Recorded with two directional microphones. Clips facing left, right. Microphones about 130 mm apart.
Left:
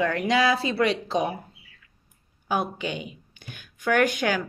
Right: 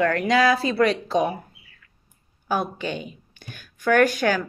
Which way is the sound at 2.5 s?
15° left (ahead or behind).